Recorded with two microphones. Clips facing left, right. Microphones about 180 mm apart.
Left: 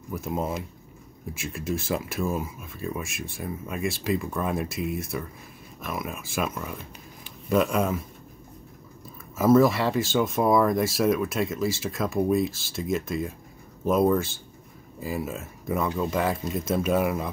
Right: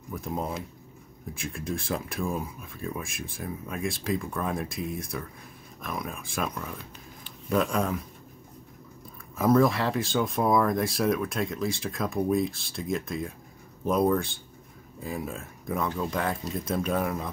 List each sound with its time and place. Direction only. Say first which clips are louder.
0.1 s a man's voice: left 3 dB; 5° left (ahead or behind)
9.4 s speech: left 3 dB; 5° left (ahead or behind)